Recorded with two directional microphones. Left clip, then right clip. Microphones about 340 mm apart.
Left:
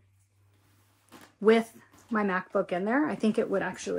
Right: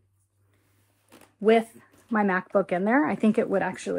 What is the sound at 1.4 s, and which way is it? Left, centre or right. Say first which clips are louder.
Speech: right 2 dB; centre.